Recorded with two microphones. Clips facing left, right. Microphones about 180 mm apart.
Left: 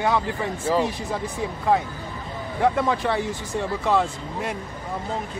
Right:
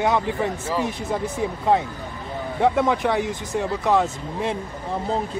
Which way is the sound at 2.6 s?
20° right (ahead or behind).